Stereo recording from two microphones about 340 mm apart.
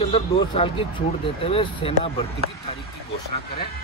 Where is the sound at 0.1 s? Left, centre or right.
Centre.